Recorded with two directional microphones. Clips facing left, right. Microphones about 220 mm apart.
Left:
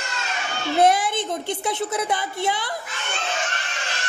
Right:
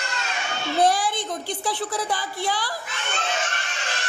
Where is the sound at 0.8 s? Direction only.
20° left (ahead or behind).